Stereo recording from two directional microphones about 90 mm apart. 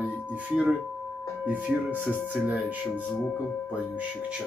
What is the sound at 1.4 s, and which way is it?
Speech, 20° right (ahead or behind).